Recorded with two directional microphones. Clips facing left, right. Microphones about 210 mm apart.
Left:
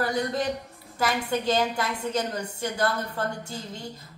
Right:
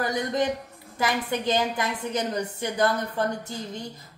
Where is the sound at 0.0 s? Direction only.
20° right (ahead or behind).